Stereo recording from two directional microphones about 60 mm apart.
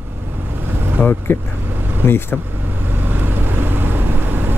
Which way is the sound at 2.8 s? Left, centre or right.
Right.